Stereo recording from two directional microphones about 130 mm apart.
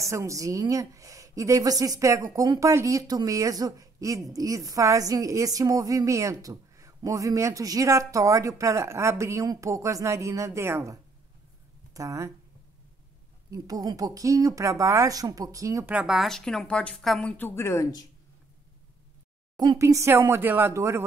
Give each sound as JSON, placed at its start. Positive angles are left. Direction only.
{"t": 0.0, "sound": "a woman's voice", "side_deg": -25}
{"t": 13.5, "sound": "a woman's voice", "side_deg": -30}
{"t": 15.9, "sound": "a woman's voice", "side_deg": -5}
{"t": 19.5, "sound": "a sound", "side_deg": -35}
{"t": 19.8, "sound": "a woman's voice", "side_deg": -20}